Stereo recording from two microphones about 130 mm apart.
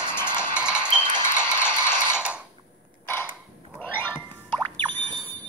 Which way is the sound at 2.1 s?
10° right (ahead or behind).